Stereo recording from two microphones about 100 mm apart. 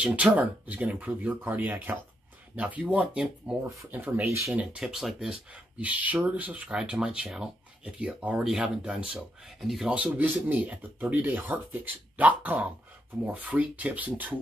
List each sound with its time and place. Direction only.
0.0 s speech: 15° right (ahead or behind)
4.6 s speech: 5° right (ahead or behind)
5.8 s speech: 15° right (ahead or behind)
9.8 s speech: 15° right (ahead or behind)